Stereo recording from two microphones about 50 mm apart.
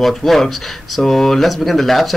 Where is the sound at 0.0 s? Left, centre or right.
Centre.